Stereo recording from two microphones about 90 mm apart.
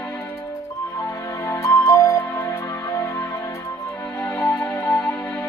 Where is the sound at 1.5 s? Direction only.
30° left (ahead or behind).